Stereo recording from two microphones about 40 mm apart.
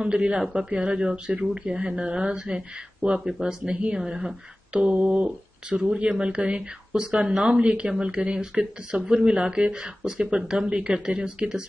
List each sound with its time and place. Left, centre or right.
0.0 s speech: right
4.7 s speech: right